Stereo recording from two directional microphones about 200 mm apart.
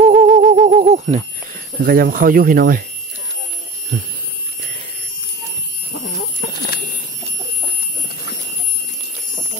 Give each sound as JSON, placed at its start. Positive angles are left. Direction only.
{"t": 0.1, "sound": "fowl", "side_deg": -35}
{"t": 1.8, "sound": "speech", "side_deg": -50}